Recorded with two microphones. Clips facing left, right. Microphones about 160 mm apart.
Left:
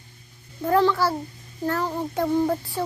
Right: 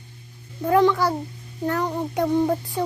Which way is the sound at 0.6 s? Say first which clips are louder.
Right 2 dB; 15° right (ahead or behind).